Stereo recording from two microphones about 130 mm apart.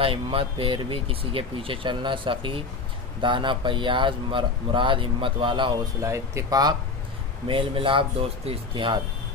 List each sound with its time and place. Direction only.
0.0 s speech: 45° right (ahead or behind)
6.0 s speech: 20° right (ahead or behind)
7.4 s speech: 40° right (ahead or behind)